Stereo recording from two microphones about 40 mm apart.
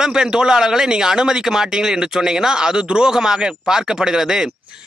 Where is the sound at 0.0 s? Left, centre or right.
Centre.